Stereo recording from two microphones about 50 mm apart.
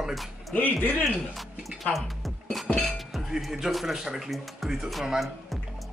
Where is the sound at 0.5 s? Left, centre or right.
Left.